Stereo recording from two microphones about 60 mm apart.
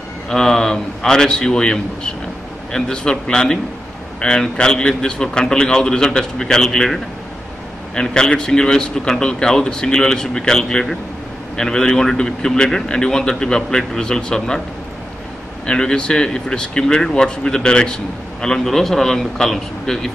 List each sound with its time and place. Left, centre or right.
0.3 s speech: centre
15.6 s speech: centre